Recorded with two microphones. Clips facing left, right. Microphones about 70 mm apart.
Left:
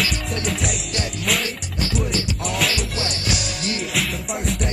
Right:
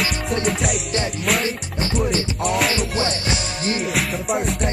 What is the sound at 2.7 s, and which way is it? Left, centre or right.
Music, right.